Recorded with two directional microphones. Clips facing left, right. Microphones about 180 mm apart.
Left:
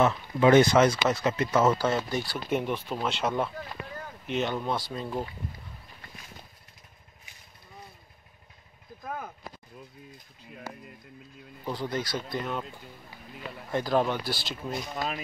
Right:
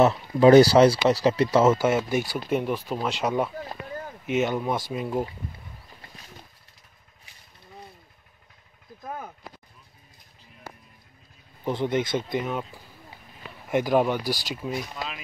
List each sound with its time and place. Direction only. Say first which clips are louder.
0.0 s speech: right 5 dB; 35° right (ahead or behind)
1.9 s speech: right 5 dB; 15° right (ahead or behind)
2.5 s speech: right 3 dB; centre (ahead or behind)
4.6 s speech: right 4 dB; 15° right (ahead or behind)
11.6 s speech: right 6 dB; 20° right (ahead or behind)
12.4 s speech: right 3 dB; 5° right (ahead or behind)
13.7 s speech: right 4 dB; 15° right (ahead or behind)